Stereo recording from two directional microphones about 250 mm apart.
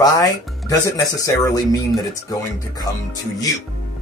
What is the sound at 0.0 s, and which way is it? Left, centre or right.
Speech, centre.